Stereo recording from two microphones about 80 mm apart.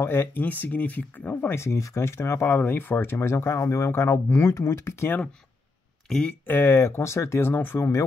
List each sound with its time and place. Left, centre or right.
0.0 s speech: left
1.5 s speech: left
2.4 s speech: left
6.0 s speech: centre
6.4 s speech: left